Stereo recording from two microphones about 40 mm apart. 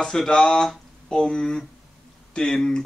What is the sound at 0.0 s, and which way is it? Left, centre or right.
Speech, centre.